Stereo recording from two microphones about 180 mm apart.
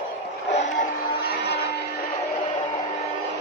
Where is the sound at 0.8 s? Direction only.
60° left (ahead or behind).